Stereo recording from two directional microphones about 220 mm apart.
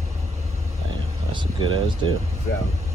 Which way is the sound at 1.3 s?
20° right (ahead or behind).